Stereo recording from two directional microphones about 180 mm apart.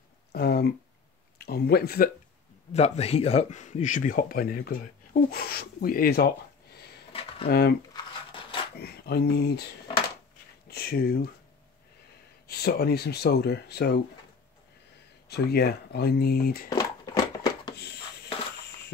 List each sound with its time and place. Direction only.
0.3 s speech: 60° left (ahead or behind)
2.7 s speech: 35° left (ahead or behind); by 6.3 s 60° left (ahead or behind)
7.1 s a sound: 30° left (ahead or behind)
7.4 s speech: 60° left (ahead or behind)
7.9 s a sound: 25° left (ahead or behind)
8.7 s speech: 60° left (ahead or behind)
10.7 s speech: 60° left (ahead or behind)
12.4 s speech: 60° left (ahead or behind)
15.2 s speech: 60° left (ahead or behind)
16.6 s a sound: 20° left (ahead or behind)